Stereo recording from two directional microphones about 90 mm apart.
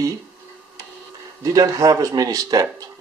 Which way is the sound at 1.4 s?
40° right (ahead or behind).